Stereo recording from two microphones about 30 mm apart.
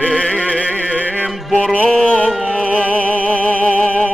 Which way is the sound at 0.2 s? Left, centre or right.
Left.